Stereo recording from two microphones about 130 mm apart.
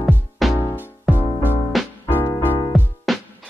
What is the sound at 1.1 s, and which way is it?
Music, 15° right (ahead or behind).